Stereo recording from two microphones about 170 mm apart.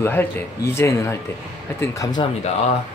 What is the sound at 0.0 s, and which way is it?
Speech, 10° left (ahead or behind).